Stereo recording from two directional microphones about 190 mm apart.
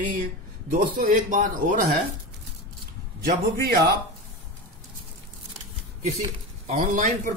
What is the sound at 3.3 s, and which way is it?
Speech, 55° right (ahead or behind).